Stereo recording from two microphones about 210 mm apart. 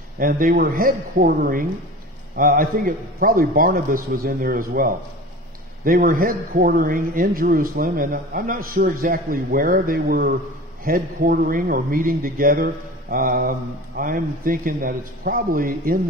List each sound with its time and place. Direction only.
0.2 s a man's voice: 40° right (ahead or behind)